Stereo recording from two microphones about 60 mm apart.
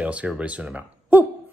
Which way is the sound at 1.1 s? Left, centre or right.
Right.